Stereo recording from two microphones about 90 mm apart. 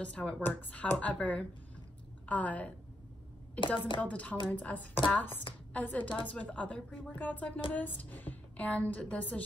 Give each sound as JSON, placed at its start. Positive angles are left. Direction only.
{"t": 0.0, "sound": "a woman's voice", "side_deg": 15}
{"t": 3.6, "sound": "a woman's voice", "side_deg": 60}
{"t": 4.0, "sound": "a woman's voice", "side_deg": 15}